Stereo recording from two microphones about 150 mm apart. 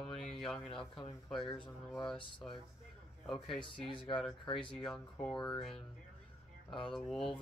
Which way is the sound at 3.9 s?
35° left (ahead or behind).